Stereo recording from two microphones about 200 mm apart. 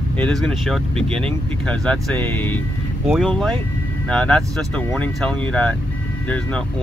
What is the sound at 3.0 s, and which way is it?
Speech, centre (ahead or behind).